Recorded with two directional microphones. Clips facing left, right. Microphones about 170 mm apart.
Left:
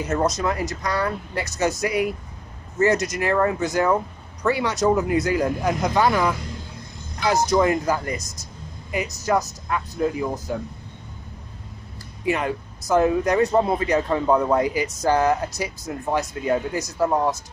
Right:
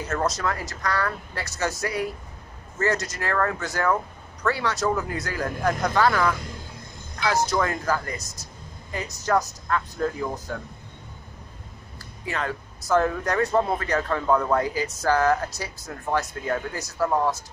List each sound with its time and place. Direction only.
0.0 s a man's voice: 15° left (ahead or behind)
12.3 s a man's voice: 15° left (ahead or behind)